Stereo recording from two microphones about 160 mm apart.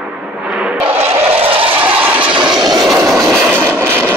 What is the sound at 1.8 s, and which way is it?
Vehicle, 10° right (ahead or behind).